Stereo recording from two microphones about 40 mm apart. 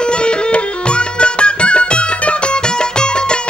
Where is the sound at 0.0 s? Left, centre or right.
Left.